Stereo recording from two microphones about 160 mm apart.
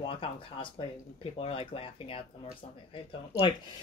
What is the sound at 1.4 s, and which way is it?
Speech, 35° left (ahead or behind).